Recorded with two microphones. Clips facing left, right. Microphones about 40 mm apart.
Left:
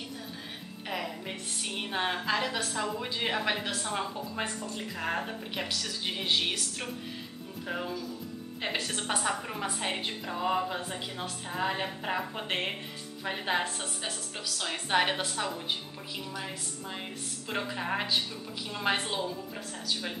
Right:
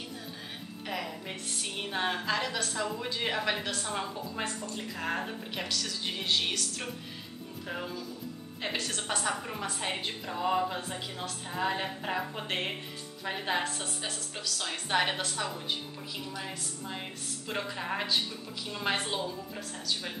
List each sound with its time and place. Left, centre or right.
0.8 s a woman's voice: centre